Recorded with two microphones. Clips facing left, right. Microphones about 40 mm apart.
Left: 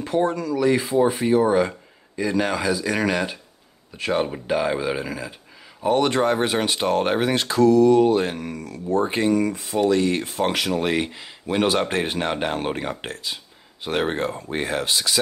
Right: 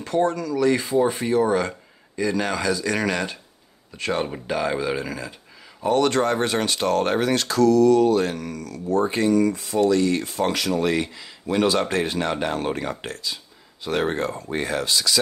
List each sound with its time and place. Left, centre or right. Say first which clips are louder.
0.0 s speech: even; centre